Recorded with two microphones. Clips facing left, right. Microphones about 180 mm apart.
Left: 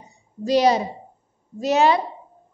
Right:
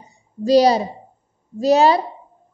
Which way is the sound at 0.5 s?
35° right (ahead or behind).